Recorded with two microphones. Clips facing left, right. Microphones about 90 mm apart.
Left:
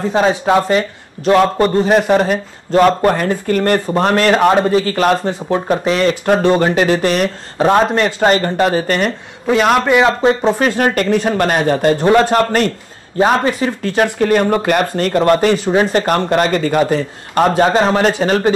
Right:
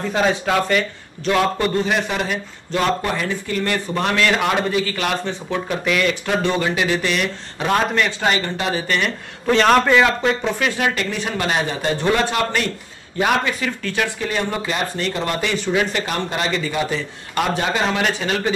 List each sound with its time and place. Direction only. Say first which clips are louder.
0.1 s a man's voice: left 6 dB; 30° left (ahead or behind)
9.5 s a man's voice: left 2 dB; 5° left (ahead or behind)
9.9 s a man's voice: left 5 dB; 30° left (ahead or behind)
14.0 s speech: left 14 dB; 50° left (ahead or behind)